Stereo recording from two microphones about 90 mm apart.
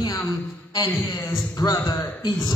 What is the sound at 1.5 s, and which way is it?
A man's voice, 45° left (ahead or behind).